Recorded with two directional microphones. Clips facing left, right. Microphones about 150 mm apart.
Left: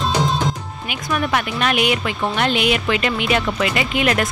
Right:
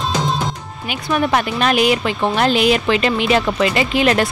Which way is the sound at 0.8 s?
30° right (ahead or behind).